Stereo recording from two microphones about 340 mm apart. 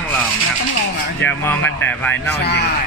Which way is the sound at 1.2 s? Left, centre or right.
Centre.